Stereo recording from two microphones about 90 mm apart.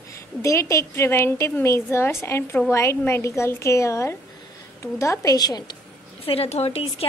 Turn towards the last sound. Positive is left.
turn(degrees=90)